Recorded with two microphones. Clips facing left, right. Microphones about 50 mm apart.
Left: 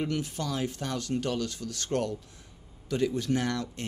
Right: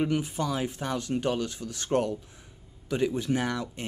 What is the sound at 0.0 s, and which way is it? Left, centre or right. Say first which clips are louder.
Speech: right 4 dB; centre.